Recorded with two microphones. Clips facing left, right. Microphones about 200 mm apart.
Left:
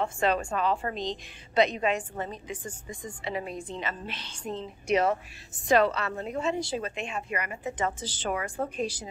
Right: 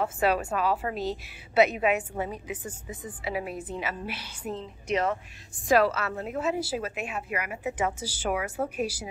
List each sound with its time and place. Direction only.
0.0 s a woman's voice: 5° right (ahead or behind)
4.8 s speech: 10° left (ahead or behind)
5.7 s a woman's voice: 5° right (ahead or behind)